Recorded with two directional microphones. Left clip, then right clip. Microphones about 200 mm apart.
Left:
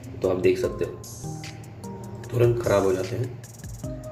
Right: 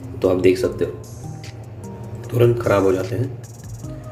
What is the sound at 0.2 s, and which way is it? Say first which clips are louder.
Speech: right 6 dB; 15° right (ahead or behind).